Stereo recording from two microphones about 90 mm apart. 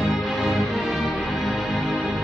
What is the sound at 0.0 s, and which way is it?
Music, centre (ahead or behind).